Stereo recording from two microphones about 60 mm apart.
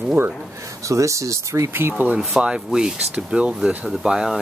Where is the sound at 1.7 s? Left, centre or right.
Right.